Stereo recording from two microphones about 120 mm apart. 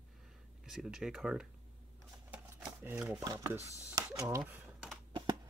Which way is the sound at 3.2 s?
30° right (ahead or behind).